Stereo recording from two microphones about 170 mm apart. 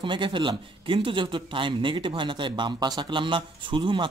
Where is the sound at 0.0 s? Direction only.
30° right (ahead or behind).